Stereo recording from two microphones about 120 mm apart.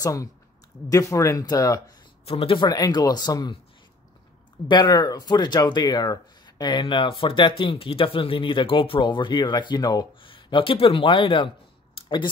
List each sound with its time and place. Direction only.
0.0 s speech: 25° left (ahead or behind)
2.2 s speech: 50° left (ahead or behind); by 3.5 s 35° left (ahead or behind)
4.6 s speech: 35° left (ahead or behind)